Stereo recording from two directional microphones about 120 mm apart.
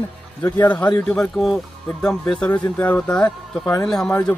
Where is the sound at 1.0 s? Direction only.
5° left (ahead or behind).